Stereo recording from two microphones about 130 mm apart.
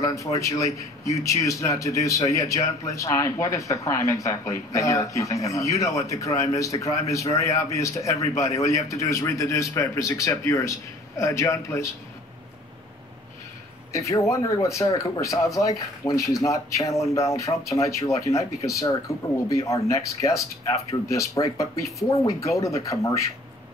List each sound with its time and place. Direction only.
0.0 s a man's voice: 25° left (ahead or behind)
13.9 s a man's voice: 25° left (ahead or behind)